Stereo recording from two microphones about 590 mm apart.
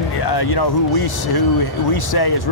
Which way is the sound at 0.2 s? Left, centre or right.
Left.